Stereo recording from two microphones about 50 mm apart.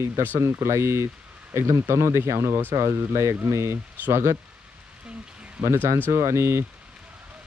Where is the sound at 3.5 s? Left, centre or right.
Right.